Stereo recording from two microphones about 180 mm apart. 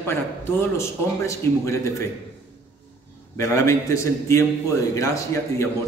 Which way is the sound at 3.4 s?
15° left (ahead or behind).